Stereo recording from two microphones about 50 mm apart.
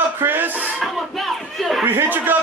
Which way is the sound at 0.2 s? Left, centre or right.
Right.